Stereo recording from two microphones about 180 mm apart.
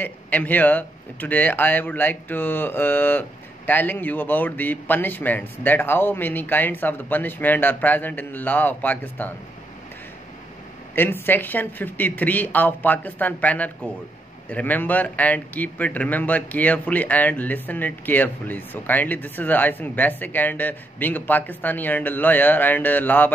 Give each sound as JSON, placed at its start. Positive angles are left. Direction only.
{"t": 0.0, "sound": "speech", "side_deg": 10}
{"t": 11.0, "sound": "speech", "side_deg": 10}